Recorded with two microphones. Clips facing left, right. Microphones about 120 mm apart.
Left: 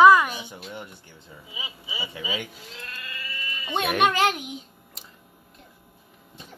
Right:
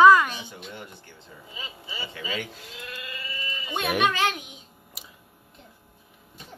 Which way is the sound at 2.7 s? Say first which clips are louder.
Right 1 dB; 10° right (ahead or behind).